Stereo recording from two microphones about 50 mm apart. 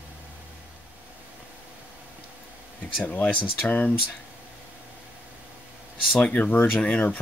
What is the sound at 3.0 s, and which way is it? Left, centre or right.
Speech, left.